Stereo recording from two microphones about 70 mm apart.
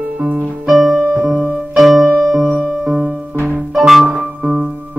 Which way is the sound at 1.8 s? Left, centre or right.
Centre.